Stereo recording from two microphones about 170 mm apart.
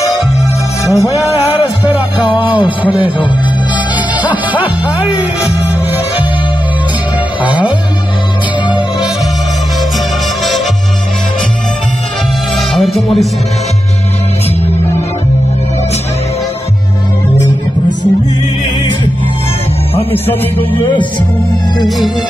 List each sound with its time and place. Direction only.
0.8 s music: 20° left (ahead or behind)
12.7 s music: centre (ahead or behind)
20.5 s speech: 30° left (ahead or behind)
21.7 s music: centre (ahead or behind)